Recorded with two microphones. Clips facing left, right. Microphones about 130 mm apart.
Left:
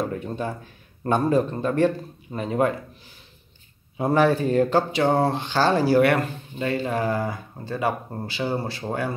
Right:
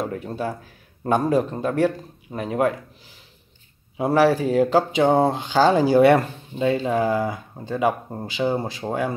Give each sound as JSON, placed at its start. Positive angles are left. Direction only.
{"t": 0.1, "sound": "speech", "side_deg": -5}
{"t": 3.9, "sound": "speech", "side_deg": -5}